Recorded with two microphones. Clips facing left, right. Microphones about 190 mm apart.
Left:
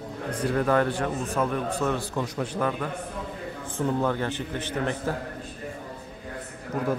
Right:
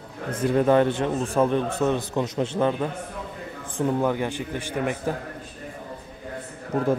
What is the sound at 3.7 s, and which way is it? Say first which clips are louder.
A man's voice: right 3 dB; 15° right (ahead or behind).